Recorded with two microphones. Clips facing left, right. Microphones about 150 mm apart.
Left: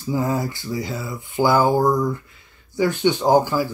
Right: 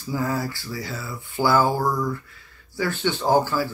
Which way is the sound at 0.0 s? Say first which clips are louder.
Left 3 dB; 20° left (ahead or behind).